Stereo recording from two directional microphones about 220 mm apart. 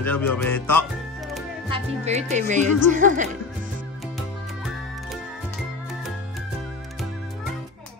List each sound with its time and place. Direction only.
0.0 s music: 10° left (ahead or behind)
1.7 s speech: 30° right (ahead or behind)